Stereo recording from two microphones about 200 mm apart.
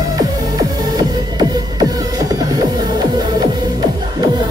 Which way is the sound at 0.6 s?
20° right (ahead or behind).